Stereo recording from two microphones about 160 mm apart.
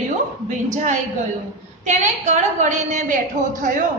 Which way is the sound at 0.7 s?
50° right (ahead or behind).